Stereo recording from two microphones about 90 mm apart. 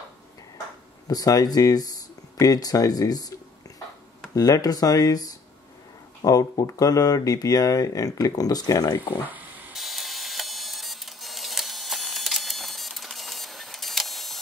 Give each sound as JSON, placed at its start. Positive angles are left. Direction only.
{"t": 1.0, "sound": "speech", "side_deg": 45}
{"t": 4.4, "sound": "speech", "side_deg": 45}
{"t": 9.2, "sound": "a sound", "side_deg": -20}
{"t": 9.8, "sound": "printer", "side_deg": 0}